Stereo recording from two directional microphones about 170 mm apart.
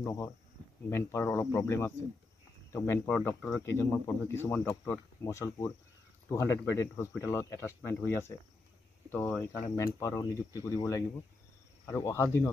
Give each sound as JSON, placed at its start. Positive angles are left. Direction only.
{"t": 0.0, "sound": "speech", "side_deg": 15}